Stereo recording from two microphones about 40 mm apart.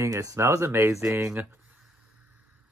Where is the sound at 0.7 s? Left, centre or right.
Right.